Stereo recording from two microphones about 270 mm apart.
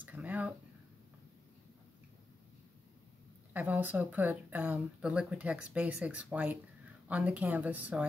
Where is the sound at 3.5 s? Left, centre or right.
Centre.